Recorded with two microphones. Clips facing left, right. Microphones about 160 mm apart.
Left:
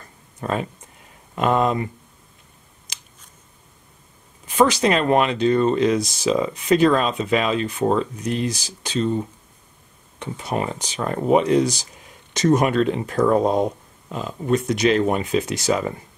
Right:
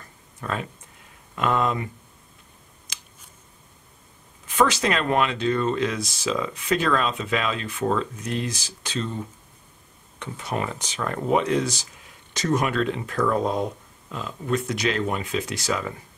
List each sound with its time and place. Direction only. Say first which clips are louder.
0.4 s speech: left 5 dB; 25° left (ahead or behind)
4.7 s speech: left 5 dB; 30° left (ahead or behind)
8.6 s speech: left 5 dB; 15° left (ahead or behind)
10.2 s speech: left 4 dB; 15° left (ahead or behind)
10.8 s speech: left 4 dB; 10° left (ahead or behind)